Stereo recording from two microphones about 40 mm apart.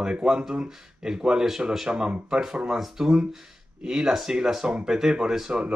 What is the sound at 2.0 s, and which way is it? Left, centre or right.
Speech, right.